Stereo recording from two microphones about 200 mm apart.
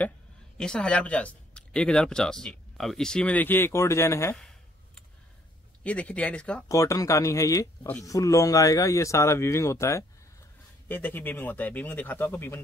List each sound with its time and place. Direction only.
0.6 s speech: 5° left (ahead or behind)
5.9 s speech: 5° left (ahead or behind)